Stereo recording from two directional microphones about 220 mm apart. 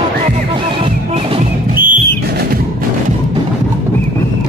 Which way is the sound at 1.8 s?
45° right (ahead or behind).